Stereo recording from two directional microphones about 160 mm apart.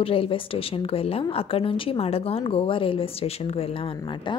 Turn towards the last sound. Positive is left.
turn(degrees=35)  # may be behind; listen again after turning